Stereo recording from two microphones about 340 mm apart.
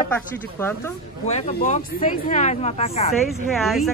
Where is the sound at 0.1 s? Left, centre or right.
Centre.